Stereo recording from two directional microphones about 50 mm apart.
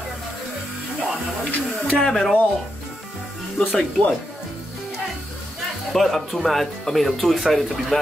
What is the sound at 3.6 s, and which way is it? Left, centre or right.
Speech, left.